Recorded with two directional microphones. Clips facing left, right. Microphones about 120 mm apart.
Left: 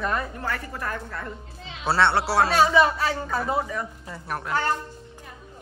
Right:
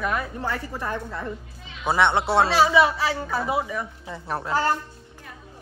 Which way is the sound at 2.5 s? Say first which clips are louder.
Left 1 dB; 5° right (ahead or behind).